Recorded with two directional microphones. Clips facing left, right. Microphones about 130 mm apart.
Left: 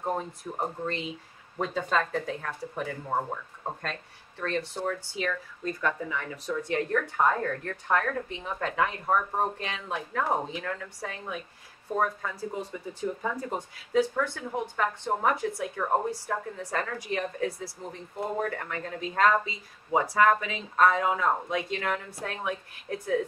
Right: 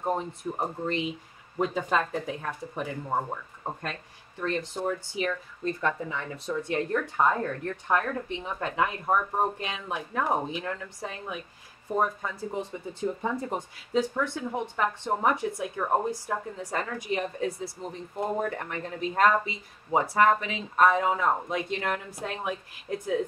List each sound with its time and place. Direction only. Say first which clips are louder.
0.5 s speech: right 2 dB; 15° right (ahead or behind)
4.4 s speech: right 1 dB; 15° right (ahead or behind)